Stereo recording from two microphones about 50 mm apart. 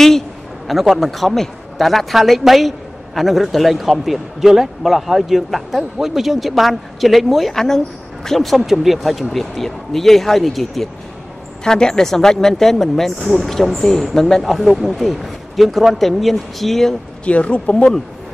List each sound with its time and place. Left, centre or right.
0.7 s speech: centre
11.6 s speech: centre
17.2 s speech: left